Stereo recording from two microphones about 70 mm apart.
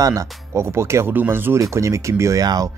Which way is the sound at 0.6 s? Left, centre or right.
Right.